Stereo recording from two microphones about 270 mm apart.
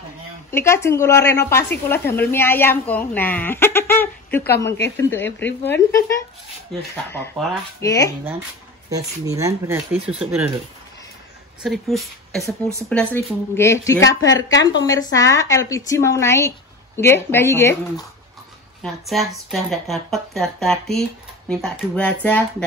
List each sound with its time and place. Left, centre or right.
0.5 s a woman's voice: centre
4.6 s speech: left
5.1 s a woman's voice: centre
8.9 s speech: centre
11.6 s a woman's voice: centre